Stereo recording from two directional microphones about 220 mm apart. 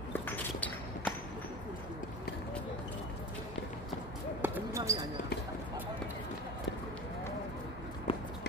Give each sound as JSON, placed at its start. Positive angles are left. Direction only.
{"t": 0.2, "sound": "a sound", "side_deg": 5}
{"t": 4.4, "sound": "basketball bounce", "side_deg": -10}
{"t": 8.1, "sound": "walk", "side_deg": 25}